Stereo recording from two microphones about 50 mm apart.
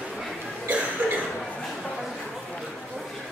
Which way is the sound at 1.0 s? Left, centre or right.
Right.